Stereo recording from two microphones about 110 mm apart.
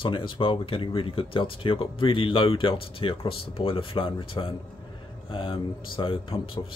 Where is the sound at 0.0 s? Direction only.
50° left (ahead or behind).